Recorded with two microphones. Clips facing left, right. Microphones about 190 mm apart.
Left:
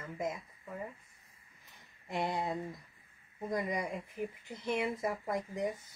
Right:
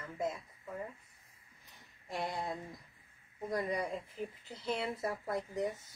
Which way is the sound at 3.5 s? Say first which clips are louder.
Even; 20° left (ahead or behind).